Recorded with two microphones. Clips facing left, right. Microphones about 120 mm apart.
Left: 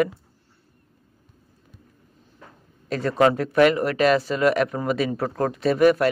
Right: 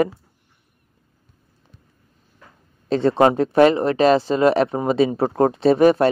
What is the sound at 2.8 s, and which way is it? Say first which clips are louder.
Speech: right 4 dB; 25° right (ahead or behind).